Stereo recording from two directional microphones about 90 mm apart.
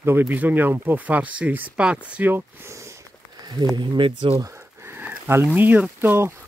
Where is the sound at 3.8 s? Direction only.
65° right (ahead or behind).